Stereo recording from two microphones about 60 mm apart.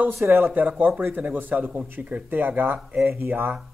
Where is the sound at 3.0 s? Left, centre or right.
Right.